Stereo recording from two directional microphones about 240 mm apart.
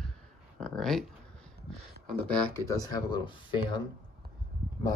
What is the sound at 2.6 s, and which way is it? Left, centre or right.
Speech, centre.